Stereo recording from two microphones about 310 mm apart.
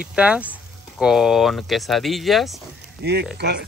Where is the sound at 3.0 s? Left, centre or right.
Right.